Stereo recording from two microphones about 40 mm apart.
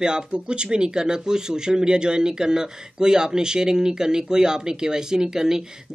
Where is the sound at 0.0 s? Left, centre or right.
Right.